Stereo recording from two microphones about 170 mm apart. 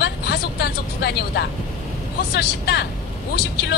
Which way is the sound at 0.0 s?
70° left (ahead or behind).